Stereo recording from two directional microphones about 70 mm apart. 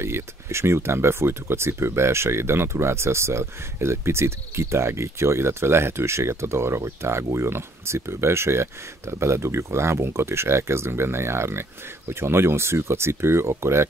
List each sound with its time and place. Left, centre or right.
0.0 s speech: right